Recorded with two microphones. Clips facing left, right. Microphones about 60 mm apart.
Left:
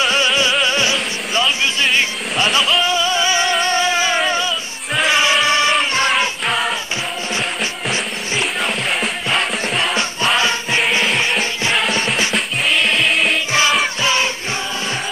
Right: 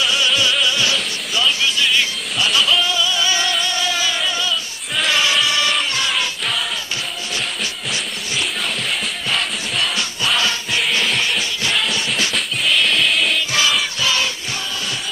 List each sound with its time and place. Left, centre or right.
0.0 s music: left
1.3 s a sound: left
1.9 s music: left
4.9 s music: left
9.3 s music: centre
9.8 s music: left
12.4 s music: centre
13.5 s music: left